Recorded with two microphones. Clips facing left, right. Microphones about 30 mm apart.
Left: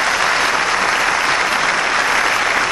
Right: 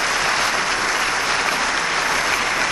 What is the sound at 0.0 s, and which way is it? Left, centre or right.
Applause, left.